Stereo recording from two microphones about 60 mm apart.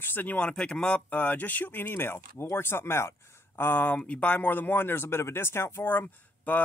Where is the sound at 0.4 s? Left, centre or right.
Centre.